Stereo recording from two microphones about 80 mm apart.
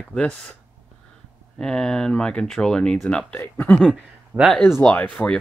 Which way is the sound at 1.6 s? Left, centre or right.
Centre.